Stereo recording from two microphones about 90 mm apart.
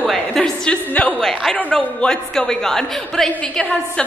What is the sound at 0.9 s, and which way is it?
Speech, 15° left (ahead or behind).